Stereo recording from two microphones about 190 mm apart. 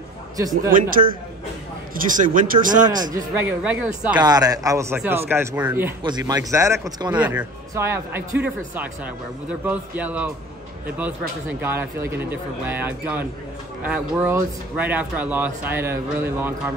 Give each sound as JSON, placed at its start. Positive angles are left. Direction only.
{"t": 0.7, "sound": "a man's voice", "side_deg": -50}
{"t": 2.0, "sound": "a man's voice", "side_deg": -45}
{"t": 3.2, "sound": "speech", "side_deg": -10}
{"t": 4.2, "sound": "speech", "side_deg": -20}
{"t": 6.0, "sound": "speech", "side_deg": -20}